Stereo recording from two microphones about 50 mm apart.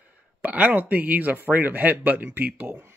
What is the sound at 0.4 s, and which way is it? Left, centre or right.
Speech, right.